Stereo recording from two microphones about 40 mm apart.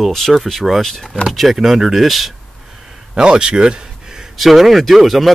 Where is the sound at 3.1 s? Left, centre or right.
Right.